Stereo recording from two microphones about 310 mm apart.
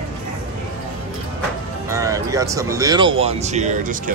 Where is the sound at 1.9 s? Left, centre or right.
Centre.